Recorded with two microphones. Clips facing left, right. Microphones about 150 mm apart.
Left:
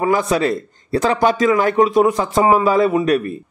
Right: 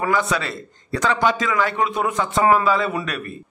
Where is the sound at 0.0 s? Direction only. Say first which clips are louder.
Left 5 dB; 35° left (ahead or behind).